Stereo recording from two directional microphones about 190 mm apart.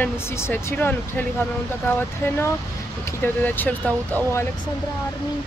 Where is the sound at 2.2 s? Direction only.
15° left (ahead or behind).